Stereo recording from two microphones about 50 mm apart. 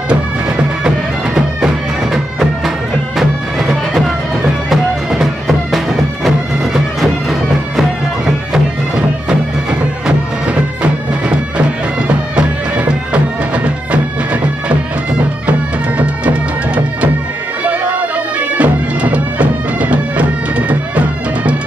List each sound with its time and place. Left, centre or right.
0.1 s bagpipes: right
3.2 s music: centre
8.9 s bagpipes: centre
14.3 s music: right
16.0 s music: right
18.6 s bagpipes: right